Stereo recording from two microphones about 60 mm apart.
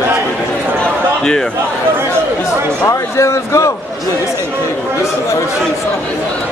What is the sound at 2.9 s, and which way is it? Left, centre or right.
Speech, left.